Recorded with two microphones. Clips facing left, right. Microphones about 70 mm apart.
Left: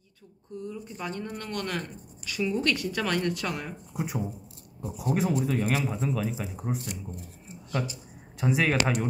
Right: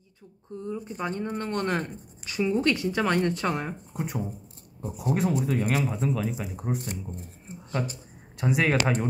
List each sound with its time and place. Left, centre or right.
0.6 s speech: right
3.9 s speech: centre
6.8 s speech: right
8.4 s speech: centre